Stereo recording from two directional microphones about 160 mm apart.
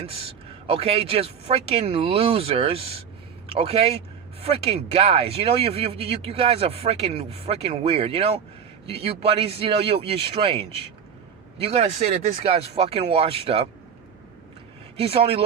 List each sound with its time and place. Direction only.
0.0 s a man's voice: 35° right (ahead or behind)
15.0 s speech: 35° right (ahead or behind)